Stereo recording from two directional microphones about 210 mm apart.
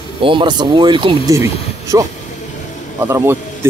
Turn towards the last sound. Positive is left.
turn(degrees=-10)  # may be behind; listen again after turning